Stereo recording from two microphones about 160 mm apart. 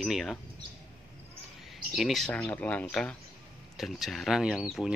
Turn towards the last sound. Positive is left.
turn(degrees=0)  # may be behind; listen again after turning